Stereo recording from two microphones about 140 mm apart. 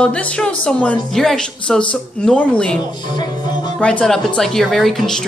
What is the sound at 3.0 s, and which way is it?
Music, 30° left (ahead or behind).